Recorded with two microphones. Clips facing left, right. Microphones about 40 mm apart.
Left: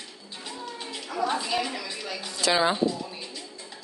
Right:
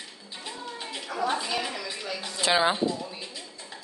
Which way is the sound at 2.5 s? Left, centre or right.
Centre.